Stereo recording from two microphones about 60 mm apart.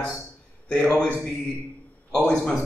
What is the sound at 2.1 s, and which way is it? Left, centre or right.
Speech, centre.